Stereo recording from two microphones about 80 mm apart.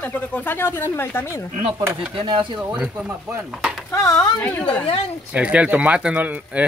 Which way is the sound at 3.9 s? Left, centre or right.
Left.